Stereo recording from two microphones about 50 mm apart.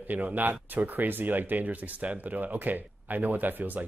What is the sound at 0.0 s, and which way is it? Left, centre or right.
Speech, right.